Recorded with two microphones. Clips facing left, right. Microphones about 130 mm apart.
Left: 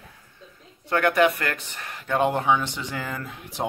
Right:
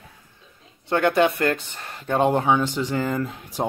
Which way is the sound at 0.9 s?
25° right (ahead or behind).